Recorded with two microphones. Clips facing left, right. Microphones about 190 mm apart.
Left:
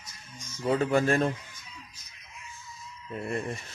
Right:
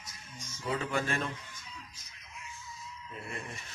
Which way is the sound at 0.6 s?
40° left (ahead or behind).